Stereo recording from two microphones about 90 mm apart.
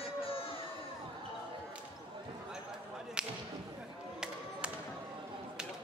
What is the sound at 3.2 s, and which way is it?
Basketball bounce, 10° right (ahead or behind).